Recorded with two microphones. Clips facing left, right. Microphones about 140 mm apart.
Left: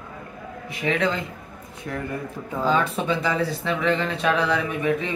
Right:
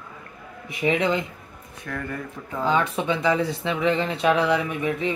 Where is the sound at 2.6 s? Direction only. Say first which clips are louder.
Even; 15° right (ahead or behind).